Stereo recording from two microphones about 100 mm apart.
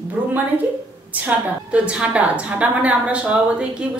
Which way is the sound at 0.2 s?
15° right (ahead or behind).